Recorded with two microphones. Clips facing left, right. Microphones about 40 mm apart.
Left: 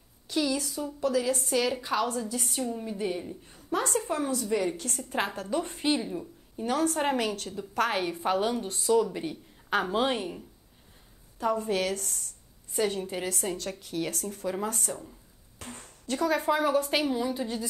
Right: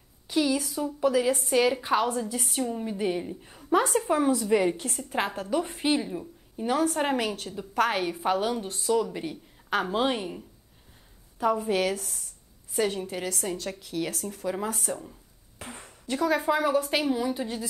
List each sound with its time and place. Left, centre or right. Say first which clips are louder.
0.3 s a woman's voice: right 3 dB; centre
2.9 s a woman's voice: right 3 dB; right
3.7 s a woman's voice: right 5 dB; centre
4.9 s a woman's voice: right 2 dB; centre
13.0 s a woman's voice: even; centre
15.6 s a sound: right 2 dB; centre
16.2 s a woman's voice: right 1 dB; centre